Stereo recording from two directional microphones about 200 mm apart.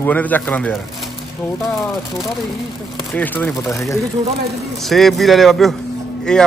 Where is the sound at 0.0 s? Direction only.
10° left (ahead or behind).